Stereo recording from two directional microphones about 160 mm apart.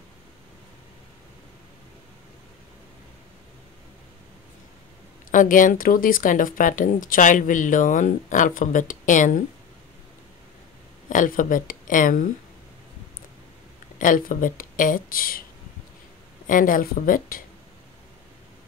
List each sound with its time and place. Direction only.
5.3 s speech: 55° left (ahead or behind)
11.1 s speech: 55° left (ahead or behind)
13.9 s speech: 55° left (ahead or behind)
16.4 s speech: 60° left (ahead or behind)